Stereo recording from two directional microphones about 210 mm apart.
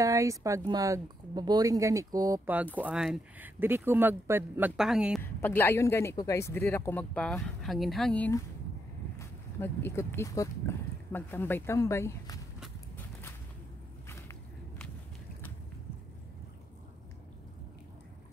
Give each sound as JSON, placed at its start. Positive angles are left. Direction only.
{"t": 0.0, "sound": "speech", "side_deg": -15}
{"t": 5.2, "sound": "speech", "side_deg": 10}